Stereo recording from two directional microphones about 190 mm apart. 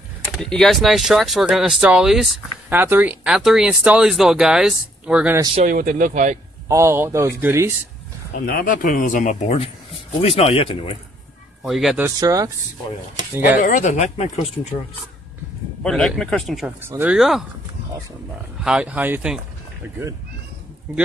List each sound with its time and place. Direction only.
0.4 s speech: centre (ahead or behind)
5.7 s speech: 45° right (ahead or behind)
6.7 s speech: 15° right (ahead or behind)
8.4 s speech: 50° left (ahead or behind); by 11.0 s 30° left (ahead or behind)
11.6 s speech: centre (ahead or behind)
12.2 s speech: 20° right (ahead or behind)
13.6 s speech: 45° left (ahead or behind)
15.8 s speech: centre (ahead or behind)
18.6 s speech: 5° right (ahead or behind)